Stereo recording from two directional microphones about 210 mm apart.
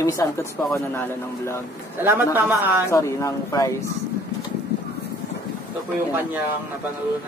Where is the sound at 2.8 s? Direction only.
15° left (ahead or behind).